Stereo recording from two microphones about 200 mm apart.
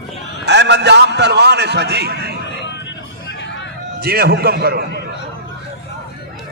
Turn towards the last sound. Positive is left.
turn(degrees=-55)  # may be behind; listen again after turning